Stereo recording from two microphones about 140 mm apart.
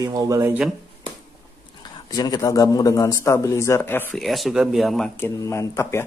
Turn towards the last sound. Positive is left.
turn(degrees=20)  # may be behind; listen again after turning